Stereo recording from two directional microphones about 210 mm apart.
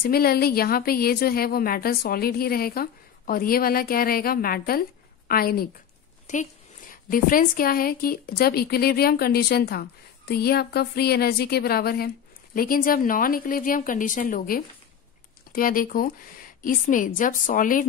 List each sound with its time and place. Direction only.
0.0 s a woman's voice: 45° left (ahead or behind)